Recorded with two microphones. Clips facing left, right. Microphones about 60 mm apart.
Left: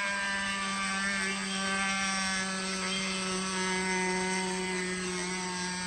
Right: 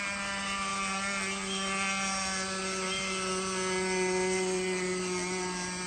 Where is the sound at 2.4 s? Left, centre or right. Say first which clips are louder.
Even; centre.